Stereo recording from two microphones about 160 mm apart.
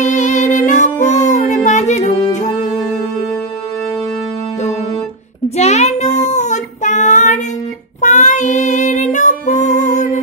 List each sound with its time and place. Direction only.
0.0 s music: 50° left (ahead or behind)
5.6 s child singing: 45° left (ahead or behind)
8.0 s music: 50° left (ahead or behind)